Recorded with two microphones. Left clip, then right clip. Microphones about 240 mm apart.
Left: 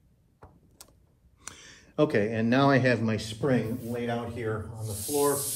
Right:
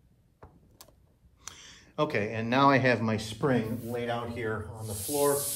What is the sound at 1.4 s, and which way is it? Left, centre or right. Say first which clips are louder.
Speech: left 1 dB; centre.